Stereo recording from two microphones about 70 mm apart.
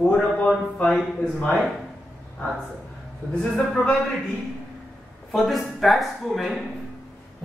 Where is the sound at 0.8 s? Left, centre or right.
Centre.